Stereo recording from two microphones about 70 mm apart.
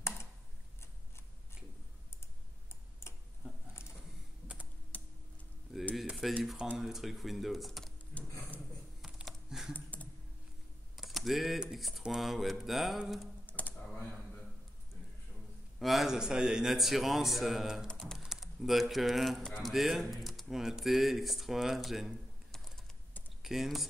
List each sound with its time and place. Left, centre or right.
2.7 s tick-tock: left
4.9 s a sound: left
5.7 s a sound: centre
6.4 s speech: centre
9.0 s computer keyboard: centre
9.8 s typing: left
11.0 s computer keyboard: centre
11.6 s speech: centre
13.5 s computer keyboard: left
15.8 s speech: centre
17.9 s typing: centre
18.2 s speech: centre
23.4 s speech: centre